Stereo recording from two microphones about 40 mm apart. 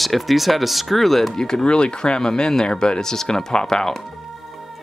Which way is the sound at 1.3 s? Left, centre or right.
Centre.